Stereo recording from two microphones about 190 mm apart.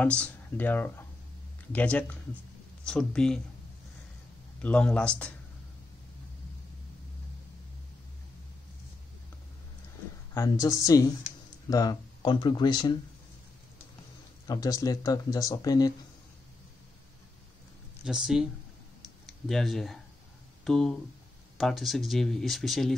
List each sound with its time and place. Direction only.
0.0 s speech: 5° left (ahead or behind)
4.6 s speech: 5° left (ahead or behind)
10.3 s speech: 15° left (ahead or behind)
14.5 s speech: 20° left (ahead or behind)
18.0 s speech: centre (ahead or behind)